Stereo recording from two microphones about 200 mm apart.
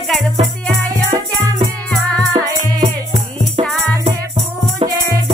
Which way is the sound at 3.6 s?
30° right (ahead or behind).